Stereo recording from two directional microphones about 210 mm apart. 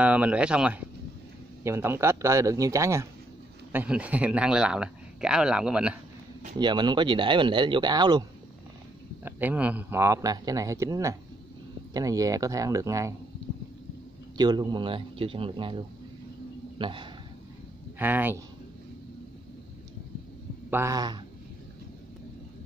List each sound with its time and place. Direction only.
0.0 s speech: 5° right (ahead or behind)
6.6 s speech: 20° right (ahead or behind)
9.2 s speech: 10° right (ahead or behind)
14.3 s speech: 20° right (ahead or behind)
17.9 s speech: 10° right (ahead or behind)
20.7 s speech: 15° right (ahead or behind)